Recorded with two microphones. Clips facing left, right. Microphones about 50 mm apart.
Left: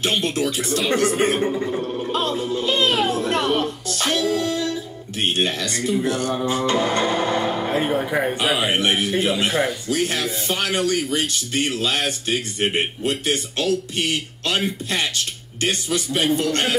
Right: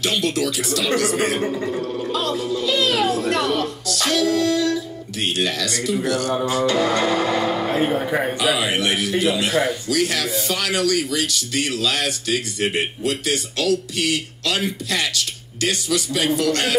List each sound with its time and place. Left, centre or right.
0.2 s speech: left
1.9 s gargling: centre
2.1 s speech: left
4.3 s female singing: right
4.7 s music: left
6.0 s a man's voice: left
7.7 s speech: centre
8.4 s a man's voice: left